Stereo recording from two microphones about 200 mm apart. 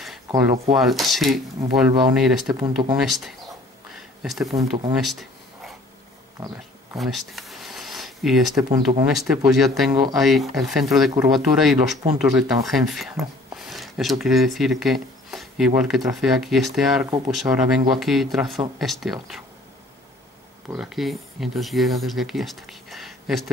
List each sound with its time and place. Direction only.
0.7 s speech: centre (ahead or behind)
2.6 s speech: 20° right (ahead or behind)
3.0 s speech: centre (ahead or behind)
3.9 s a sound: centre (ahead or behind)
4.5 s speech: 15° right (ahead or behind)
4.9 s speech: centre (ahead or behind)
7.0 s a sound: centre (ahead or behind)
8.6 s speech: 25° right (ahead or behind)
9.2 s speech: centre (ahead or behind)
20.7 s speech: centre (ahead or behind)